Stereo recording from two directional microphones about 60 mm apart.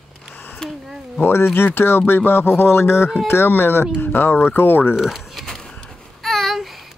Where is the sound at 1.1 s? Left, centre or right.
Left.